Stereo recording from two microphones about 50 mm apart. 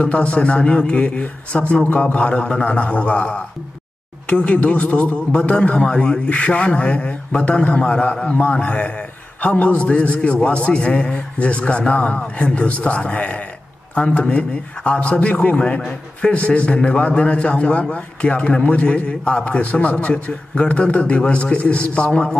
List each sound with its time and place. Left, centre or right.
0.0 s a man's voice: left
5.3 s a man's voice: centre